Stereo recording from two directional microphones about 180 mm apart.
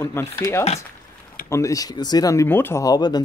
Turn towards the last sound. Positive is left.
turn(degrees=20)  # may be behind; listen again after turning